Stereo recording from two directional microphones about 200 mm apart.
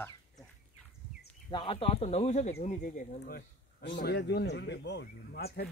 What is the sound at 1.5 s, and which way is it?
Speech, 25° left (ahead or behind).